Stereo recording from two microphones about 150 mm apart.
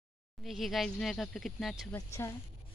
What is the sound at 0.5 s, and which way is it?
Speech, centre (ahead or behind).